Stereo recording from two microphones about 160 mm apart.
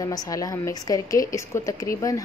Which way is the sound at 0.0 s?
25° left (ahead or behind).